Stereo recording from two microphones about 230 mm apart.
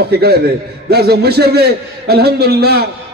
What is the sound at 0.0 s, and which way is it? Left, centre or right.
A man's voice, right.